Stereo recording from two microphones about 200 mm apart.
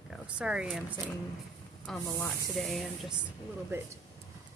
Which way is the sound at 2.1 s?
15° left (ahead or behind).